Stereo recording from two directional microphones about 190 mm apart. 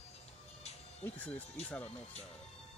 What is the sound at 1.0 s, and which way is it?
Speech, 10° left (ahead or behind).